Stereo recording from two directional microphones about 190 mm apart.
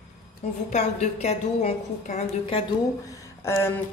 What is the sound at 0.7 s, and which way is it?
A woman's voice, 35° left (ahead or behind).